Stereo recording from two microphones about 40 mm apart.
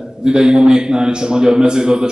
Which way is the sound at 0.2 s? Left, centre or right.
Right.